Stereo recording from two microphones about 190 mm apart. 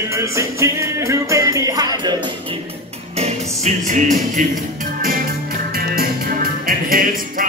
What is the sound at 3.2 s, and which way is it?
Music, 40° right (ahead or behind).